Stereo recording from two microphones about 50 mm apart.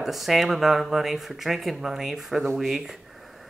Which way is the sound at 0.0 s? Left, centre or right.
Centre.